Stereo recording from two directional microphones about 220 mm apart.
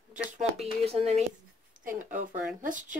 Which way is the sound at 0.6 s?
30° right (ahead or behind).